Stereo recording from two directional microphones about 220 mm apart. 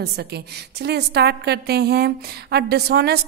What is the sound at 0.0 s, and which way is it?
A woman's voice, 45° right (ahead or behind).